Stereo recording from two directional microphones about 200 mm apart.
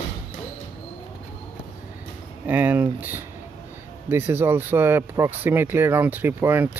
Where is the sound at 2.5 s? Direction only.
10° right (ahead or behind).